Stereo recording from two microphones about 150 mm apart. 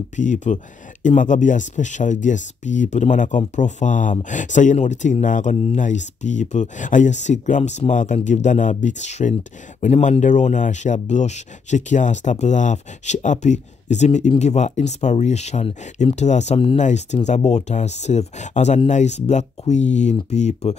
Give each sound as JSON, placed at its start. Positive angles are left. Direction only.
{"t": 0.1, "sound": "speech", "side_deg": 55}